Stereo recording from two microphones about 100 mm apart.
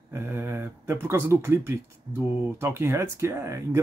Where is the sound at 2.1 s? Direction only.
45° right (ahead or behind).